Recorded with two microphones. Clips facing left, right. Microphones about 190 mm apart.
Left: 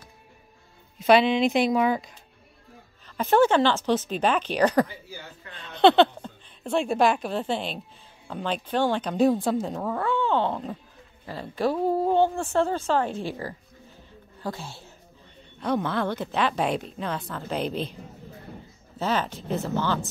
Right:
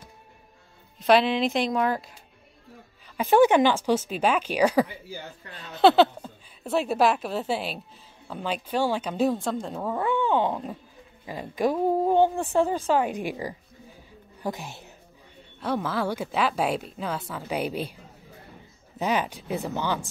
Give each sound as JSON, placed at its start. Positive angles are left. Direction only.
{"t": 0.9, "sound": "speech", "side_deg": 0}
{"t": 3.2, "sound": "a woman's voice", "side_deg": -10}
{"t": 9.8, "sound": "speech", "side_deg": -15}
{"t": 15.6, "sound": "speech", "side_deg": -5}
{"t": 18.9, "sound": "speech", "side_deg": -15}